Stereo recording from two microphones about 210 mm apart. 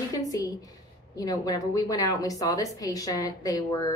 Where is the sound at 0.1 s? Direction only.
15° left (ahead or behind).